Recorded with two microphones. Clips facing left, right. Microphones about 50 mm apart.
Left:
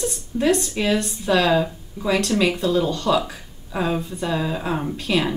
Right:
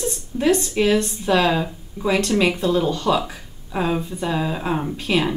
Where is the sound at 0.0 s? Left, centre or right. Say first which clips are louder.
Even; centre.